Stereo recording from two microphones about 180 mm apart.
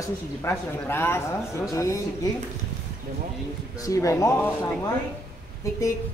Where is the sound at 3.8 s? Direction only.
20° left (ahead or behind).